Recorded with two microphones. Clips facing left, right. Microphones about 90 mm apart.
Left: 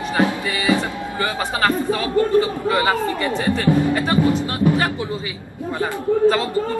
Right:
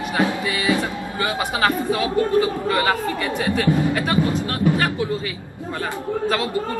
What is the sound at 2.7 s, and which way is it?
Speech, 15° left (ahead or behind).